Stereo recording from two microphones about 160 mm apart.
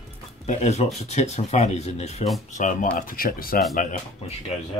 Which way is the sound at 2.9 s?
65° left (ahead or behind).